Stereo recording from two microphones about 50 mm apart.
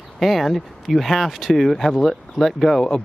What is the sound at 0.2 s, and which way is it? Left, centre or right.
Speech, centre.